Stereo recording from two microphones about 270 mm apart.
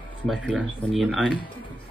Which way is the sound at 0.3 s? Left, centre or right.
Centre.